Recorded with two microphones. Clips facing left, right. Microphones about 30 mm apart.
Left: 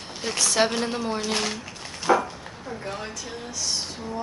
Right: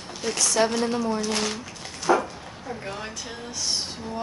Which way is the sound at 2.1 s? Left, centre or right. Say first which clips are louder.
Even; left.